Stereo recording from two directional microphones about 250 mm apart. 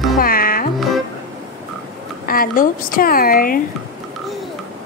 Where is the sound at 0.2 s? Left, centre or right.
Left.